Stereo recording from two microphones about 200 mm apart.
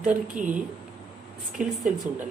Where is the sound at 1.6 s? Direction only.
5° right (ahead or behind).